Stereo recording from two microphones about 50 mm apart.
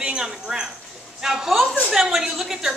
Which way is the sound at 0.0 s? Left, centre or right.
Centre.